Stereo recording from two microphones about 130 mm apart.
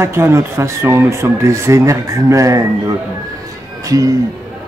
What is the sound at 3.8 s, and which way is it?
Speech, 25° right (ahead or behind).